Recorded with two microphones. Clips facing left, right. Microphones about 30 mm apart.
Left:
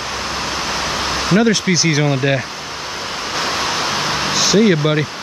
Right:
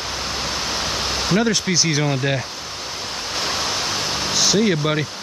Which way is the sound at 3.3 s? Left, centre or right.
Centre.